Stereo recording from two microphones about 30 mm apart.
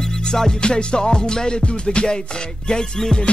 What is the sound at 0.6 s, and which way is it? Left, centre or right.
Music, left.